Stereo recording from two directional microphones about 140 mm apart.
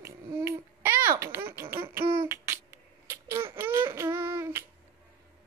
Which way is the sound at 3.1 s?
20° right (ahead or behind).